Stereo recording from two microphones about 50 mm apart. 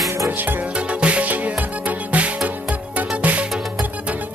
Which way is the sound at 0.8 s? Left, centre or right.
Right.